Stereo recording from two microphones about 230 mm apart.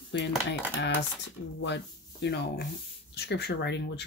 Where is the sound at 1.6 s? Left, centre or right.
Left.